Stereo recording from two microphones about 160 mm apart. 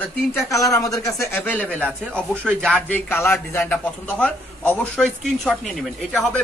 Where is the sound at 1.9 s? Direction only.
10° right (ahead or behind).